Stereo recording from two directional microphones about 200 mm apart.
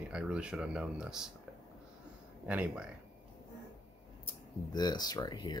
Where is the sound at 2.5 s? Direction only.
5° right (ahead or behind).